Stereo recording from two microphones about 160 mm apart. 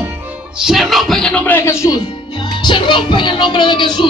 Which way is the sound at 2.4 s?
30° left (ahead or behind).